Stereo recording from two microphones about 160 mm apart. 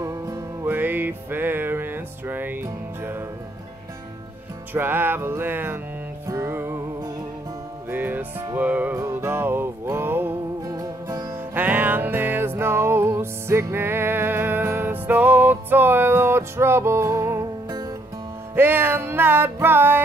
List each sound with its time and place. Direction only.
0.0 s music: 20° right (ahead or behind)
4.7 s music: 15° right (ahead or behind)
18.5 s music: 15° right (ahead or behind)